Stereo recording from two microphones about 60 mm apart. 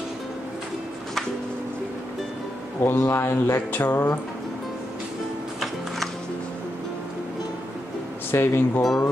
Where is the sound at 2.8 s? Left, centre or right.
Left.